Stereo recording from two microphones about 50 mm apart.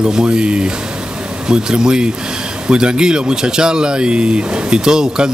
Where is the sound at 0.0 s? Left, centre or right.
Centre.